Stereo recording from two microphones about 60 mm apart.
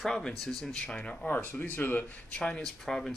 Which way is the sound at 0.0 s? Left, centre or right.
Centre.